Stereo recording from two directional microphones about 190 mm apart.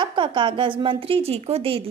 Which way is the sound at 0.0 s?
25° right (ahead or behind).